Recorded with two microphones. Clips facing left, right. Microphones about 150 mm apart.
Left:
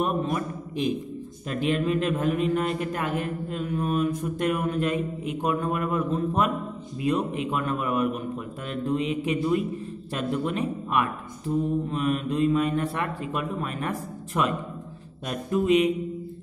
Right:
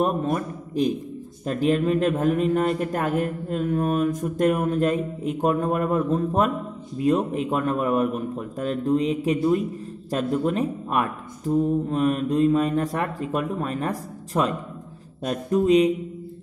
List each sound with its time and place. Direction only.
0.0 s a man's voice: 40° right (ahead or behind)